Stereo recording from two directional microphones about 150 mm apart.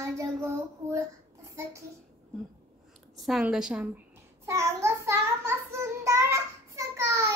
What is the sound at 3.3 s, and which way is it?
Speech, 5° right (ahead or behind).